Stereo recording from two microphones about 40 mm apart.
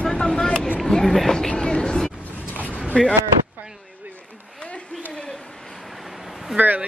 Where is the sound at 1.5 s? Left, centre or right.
Left.